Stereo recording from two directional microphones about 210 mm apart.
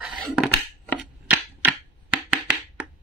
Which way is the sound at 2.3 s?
5° right (ahead or behind).